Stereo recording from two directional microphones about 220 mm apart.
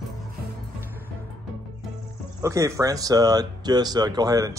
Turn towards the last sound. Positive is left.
turn(degrees=-15)  # may be behind; listen again after turning